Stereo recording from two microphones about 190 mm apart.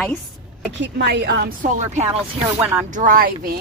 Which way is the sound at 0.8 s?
60° right (ahead or behind).